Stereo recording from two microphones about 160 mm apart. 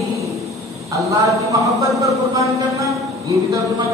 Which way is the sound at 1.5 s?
20° right (ahead or behind).